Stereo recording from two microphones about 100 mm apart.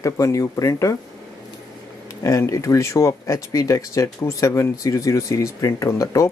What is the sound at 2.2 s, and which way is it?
Speech, 30° left (ahead or behind).